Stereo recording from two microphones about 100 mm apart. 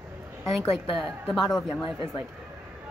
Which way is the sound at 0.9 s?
Centre (ahead or behind).